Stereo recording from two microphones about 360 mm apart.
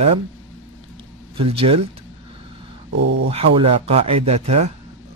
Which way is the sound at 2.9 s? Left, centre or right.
Right.